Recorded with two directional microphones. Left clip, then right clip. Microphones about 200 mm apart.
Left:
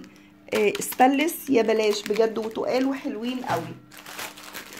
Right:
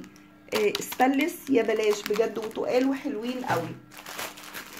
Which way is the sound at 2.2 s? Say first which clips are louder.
Left 4 dB; 45° left (ahead or behind).